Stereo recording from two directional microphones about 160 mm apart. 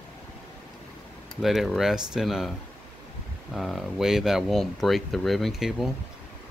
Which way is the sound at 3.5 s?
Centre (ahead or behind).